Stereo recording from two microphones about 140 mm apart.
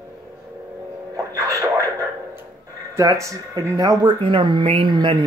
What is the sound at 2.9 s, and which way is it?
Speech, 20° right (ahead or behind).